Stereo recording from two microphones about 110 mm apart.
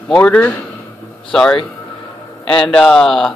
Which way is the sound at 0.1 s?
10° left (ahead or behind).